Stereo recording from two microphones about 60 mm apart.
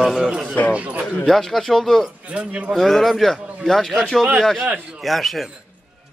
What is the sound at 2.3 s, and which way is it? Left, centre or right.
Speech, right.